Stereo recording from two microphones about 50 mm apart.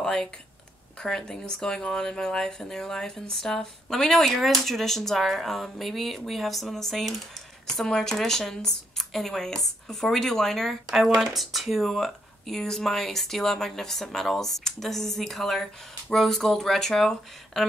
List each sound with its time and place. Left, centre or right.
0.0 s speech: centre
10.9 s speech: centre